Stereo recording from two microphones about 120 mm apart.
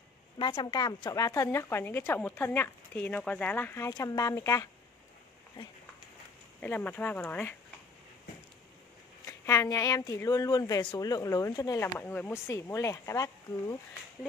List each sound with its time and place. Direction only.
0.4 s speech: 45° left (ahead or behind); by 3.9 s 20° left (ahead or behind)
3.9 s speech: 30° left (ahead or behind)
6.6 s speech: 15° left (ahead or behind)
9.2 s speech: 25° left (ahead or behind)
12.0 s speech: 15° left (ahead or behind)